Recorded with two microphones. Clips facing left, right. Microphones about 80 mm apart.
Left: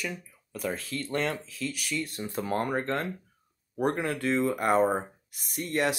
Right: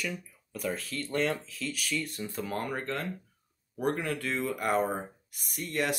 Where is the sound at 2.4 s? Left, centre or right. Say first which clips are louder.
Left 6 dB; left.